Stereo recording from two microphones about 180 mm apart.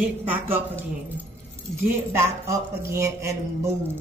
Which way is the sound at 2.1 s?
15° right (ahead or behind).